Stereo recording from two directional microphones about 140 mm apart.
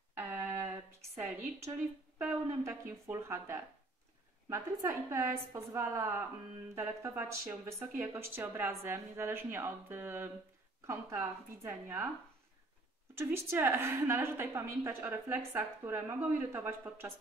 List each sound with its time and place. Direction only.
0.1 s a sound: 15° right (ahead or behind)
2.1 s a woman's voice: 20° right (ahead or behind)
13.1 s a woman's voice: 15° right (ahead or behind)